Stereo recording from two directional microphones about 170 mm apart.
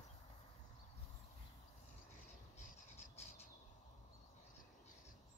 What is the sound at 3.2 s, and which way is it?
Bird, 40° left (ahead or behind).